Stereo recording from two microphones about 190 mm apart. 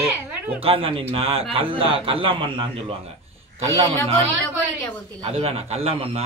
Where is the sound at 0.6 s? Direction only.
30° right (ahead or behind).